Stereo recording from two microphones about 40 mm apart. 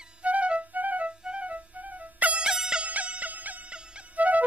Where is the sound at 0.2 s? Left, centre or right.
Right.